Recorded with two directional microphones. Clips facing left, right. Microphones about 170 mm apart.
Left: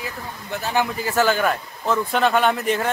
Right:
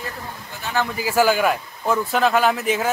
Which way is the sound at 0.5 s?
70° left (ahead or behind).